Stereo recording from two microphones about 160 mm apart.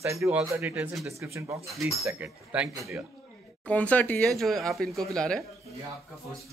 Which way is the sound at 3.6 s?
10° left (ahead or behind).